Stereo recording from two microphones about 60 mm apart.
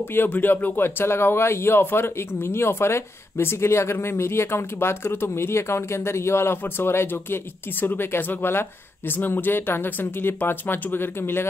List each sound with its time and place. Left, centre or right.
0.0 s speech: left
0.8 s speech: left